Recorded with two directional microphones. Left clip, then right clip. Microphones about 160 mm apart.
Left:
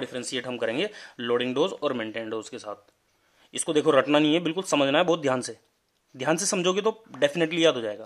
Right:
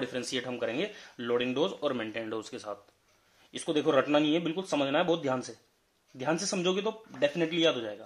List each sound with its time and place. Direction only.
0.0 s speech: 15° left (ahead or behind); by 8.0 s 40° left (ahead or behind)